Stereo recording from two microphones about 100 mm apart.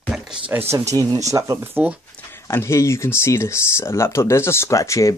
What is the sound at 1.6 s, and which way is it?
Speech, 20° right (ahead or behind).